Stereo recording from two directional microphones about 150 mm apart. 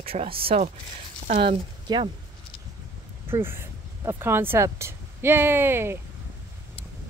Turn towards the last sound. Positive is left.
turn(degrees=-15)  # may be behind; listen again after turning